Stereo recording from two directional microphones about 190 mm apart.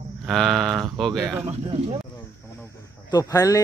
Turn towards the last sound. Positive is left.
turn(degrees=15)  # may be behind; listen again after turning